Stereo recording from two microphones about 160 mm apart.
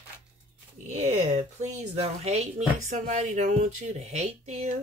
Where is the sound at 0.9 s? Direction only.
45° right (ahead or behind).